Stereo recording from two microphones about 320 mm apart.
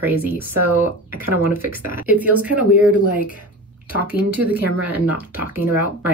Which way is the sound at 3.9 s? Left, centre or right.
Centre.